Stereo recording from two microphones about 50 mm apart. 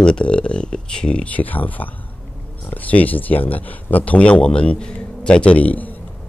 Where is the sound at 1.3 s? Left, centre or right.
Left.